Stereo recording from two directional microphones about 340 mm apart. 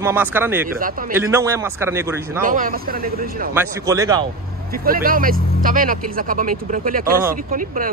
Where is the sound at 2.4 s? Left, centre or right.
Right.